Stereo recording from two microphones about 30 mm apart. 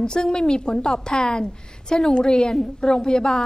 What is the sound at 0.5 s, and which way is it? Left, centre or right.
A woman's voice, left.